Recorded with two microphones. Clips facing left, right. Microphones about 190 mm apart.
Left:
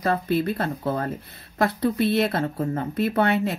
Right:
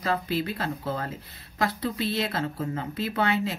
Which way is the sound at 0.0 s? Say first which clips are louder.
Left 5 dB; 55° left (ahead or behind).